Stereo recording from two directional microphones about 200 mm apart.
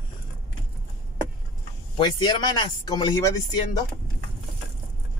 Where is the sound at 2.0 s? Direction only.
20° left (ahead or behind).